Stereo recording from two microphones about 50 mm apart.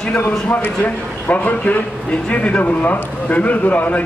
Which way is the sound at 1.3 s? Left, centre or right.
Left.